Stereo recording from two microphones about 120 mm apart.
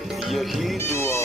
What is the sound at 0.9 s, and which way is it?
Music, 20° left (ahead or behind).